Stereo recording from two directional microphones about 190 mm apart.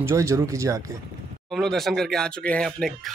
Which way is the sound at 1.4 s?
Centre (ahead or behind).